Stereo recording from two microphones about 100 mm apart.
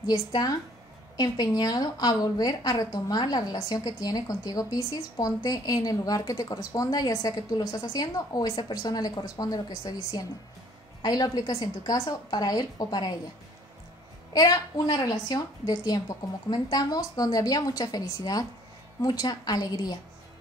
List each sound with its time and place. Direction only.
0.0 s a woman's voice: 40° left (ahead or behind)
14.3 s a woman's voice: 40° left (ahead or behind)